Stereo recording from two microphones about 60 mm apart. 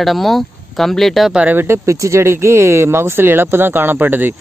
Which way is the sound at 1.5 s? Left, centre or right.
Right.